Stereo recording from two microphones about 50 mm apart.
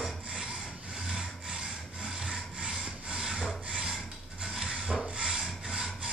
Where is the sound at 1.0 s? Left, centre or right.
Centre.